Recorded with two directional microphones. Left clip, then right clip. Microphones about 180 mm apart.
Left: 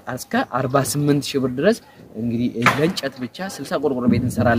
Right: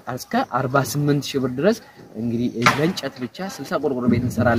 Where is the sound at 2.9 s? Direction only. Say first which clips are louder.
Left 2 dB; 20° left (ahead or behind).